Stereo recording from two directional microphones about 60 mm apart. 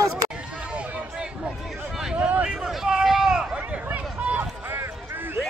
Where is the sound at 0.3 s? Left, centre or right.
Centre.